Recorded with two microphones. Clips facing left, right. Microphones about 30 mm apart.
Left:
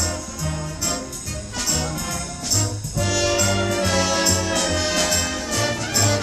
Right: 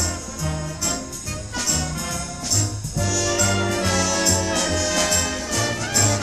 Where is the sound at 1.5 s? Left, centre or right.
Centre.